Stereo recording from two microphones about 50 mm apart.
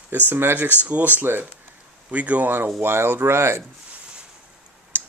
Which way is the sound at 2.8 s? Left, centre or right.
Right.